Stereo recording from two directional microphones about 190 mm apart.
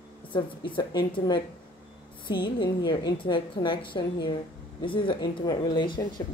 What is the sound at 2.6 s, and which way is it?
Speech, 25° left (ahead or behind).